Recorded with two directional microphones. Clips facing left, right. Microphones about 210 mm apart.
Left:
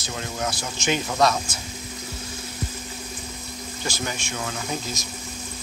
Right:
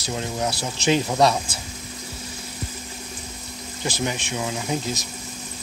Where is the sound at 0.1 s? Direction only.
20° right (ahead or behind).